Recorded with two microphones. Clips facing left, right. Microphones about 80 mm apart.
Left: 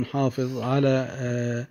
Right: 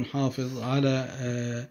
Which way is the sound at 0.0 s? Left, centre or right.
Left.